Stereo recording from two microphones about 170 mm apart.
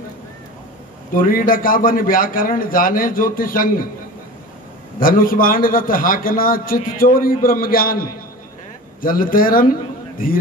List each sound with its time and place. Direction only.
1.1 s a man's voice: 55° left (ahead or behind)
5.0 s a man's voice: 55° left (ahead or behind)